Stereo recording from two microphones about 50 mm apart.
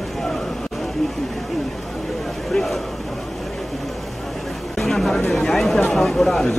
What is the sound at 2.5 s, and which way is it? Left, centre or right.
Speech, centre.